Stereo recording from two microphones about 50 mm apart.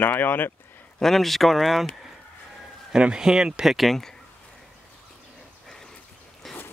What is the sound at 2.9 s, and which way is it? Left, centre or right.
Speech, centre.